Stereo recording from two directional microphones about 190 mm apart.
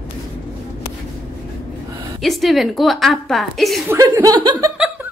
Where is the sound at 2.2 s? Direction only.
Centre (ahead or behind).